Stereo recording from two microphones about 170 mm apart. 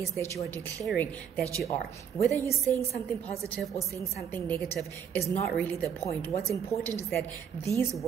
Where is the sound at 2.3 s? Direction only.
15° left (ahead or behind).